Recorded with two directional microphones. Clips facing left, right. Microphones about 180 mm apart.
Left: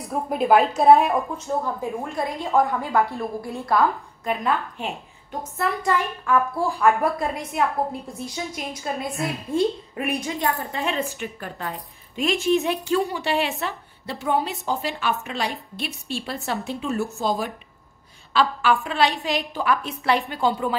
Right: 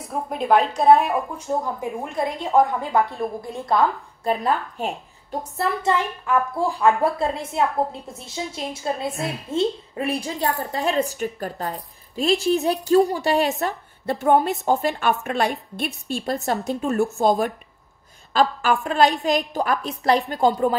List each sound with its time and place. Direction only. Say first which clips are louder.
0.1 s a woman's voice: left 1 dB; 5° left (ahead or behind)
1.8 s a woman's voice: right 1 dB; 20° right (ahead or behind)
4.2 s a woman's voice: right 2 dB; 35° right (ahead or behind)
5.6 s a woman's voice: right 1 dB; 25° right (ahead or behind)
7.0 s a woman's voice: right 2 dB; 30° right (ahead or behind)